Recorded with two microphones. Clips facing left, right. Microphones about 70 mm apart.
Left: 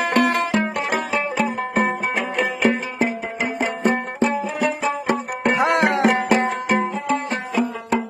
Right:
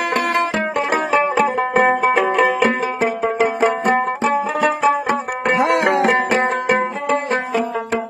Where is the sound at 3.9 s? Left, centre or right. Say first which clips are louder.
Right 4 dB; right.